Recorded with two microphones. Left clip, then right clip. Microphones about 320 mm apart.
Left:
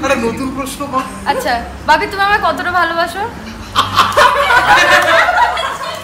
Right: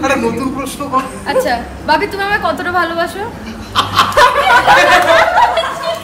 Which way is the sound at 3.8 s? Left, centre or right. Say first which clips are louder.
Even; right.